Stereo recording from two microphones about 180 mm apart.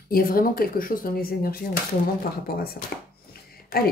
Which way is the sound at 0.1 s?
55° left (ahead or behind).